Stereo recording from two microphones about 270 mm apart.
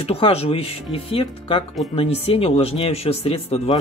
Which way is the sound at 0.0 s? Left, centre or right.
Left.